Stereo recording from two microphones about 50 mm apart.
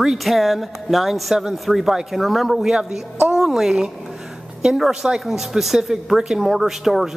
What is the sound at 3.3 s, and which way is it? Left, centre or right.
A woman's voice, centre.